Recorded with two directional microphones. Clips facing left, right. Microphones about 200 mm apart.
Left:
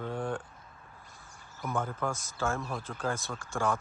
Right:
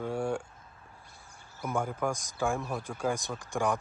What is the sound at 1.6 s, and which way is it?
Speech, 15° right (ahead or behind).